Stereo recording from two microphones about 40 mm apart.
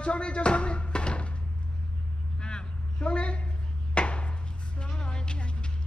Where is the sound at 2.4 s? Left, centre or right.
Left.